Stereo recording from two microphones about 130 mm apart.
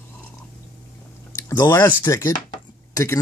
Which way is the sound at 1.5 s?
30° left (ahead or behind).